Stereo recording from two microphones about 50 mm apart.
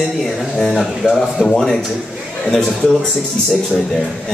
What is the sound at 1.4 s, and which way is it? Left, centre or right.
Speech, left.